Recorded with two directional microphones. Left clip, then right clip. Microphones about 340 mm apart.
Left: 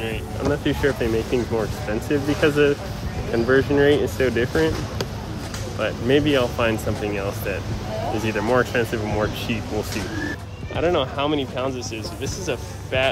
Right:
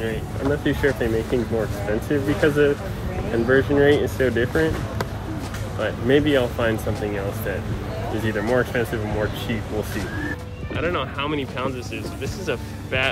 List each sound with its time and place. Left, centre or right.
0.7 s speech: centre
5.8 s speech: centre
8.3 s speech: centre
10.8 s speech: centre